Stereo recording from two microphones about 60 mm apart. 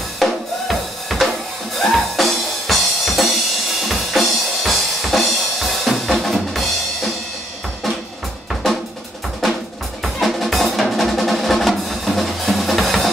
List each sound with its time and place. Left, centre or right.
0.2 s drum: centre
1.8 s music: centre
3.9 s drum kit: centre
10.0 s drum: centre